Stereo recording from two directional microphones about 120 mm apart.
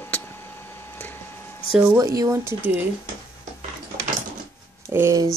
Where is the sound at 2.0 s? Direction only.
30° right (ahead or behind).